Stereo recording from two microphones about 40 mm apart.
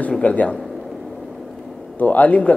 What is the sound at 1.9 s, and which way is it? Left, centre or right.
Speech, left.